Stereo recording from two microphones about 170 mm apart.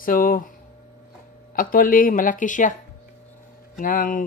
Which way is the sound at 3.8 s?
55° left (ahead or behind).